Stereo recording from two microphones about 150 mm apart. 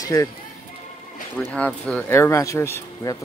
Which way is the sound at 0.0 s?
20° left (ahead or behind).